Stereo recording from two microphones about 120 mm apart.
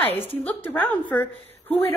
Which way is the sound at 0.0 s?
15° left (ahead or behind).